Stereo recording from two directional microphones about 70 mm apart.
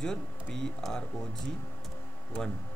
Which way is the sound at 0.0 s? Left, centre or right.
Centre.